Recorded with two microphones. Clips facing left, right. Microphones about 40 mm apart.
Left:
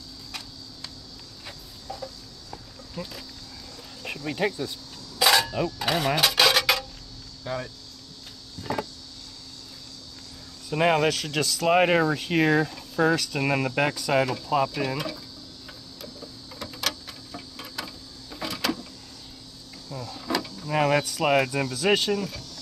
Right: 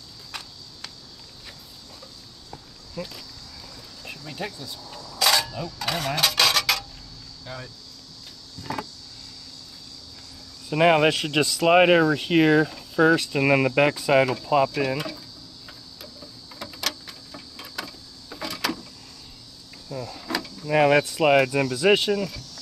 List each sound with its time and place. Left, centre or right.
3.0 s speech: centre
4.0 s a sound: left
4.5 s speech: left
5.2 s a sound: centre
7.4 s speech: centre
10.7 s speech: centre
16.5 s a sound: centre
19.9 s power windows: centre
20.6 s speech: right